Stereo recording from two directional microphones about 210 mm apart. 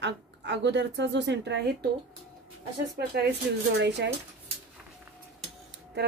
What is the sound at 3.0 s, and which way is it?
Speech, 50° right (ahead or behind).